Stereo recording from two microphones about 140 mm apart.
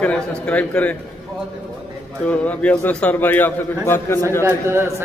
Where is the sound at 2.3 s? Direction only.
10° left (ahead or behind).